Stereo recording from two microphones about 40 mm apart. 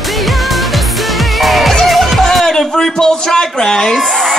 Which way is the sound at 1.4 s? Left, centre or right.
Centre.